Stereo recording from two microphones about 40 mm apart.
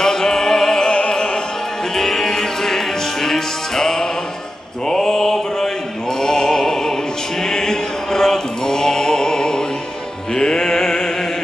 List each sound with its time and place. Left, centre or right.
0.0 s music: centre
4.8 s mantra: centre
6.4 s music: centre